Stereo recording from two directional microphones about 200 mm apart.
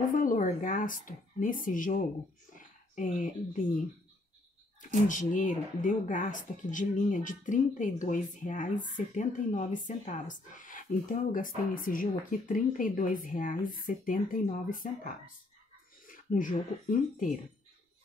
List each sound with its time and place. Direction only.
0.1 s speech: 40° left (ahead or behind)
2.5 s a sound: 40° left (ahead or behind)
5.3 s speech: 40° left (ahead or behind)